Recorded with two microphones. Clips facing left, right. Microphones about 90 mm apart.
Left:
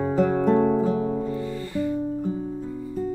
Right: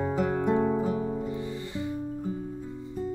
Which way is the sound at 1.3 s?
20° right (ahead or behind).